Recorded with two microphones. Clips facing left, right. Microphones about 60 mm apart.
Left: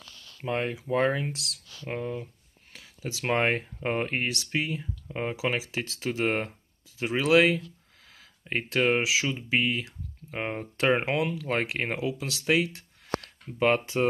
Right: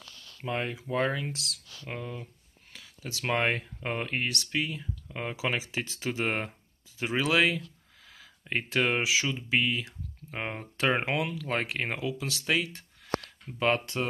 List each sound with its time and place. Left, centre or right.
0.4 s speech: centre
1.3 s speech: centre
1.9 s speech: centre
5.0 s speech: centre
12.3 s speech: centre
13.6 s speech: centre